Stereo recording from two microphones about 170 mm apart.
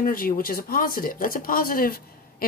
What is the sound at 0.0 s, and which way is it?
Speech, 55° left (ahead or behind).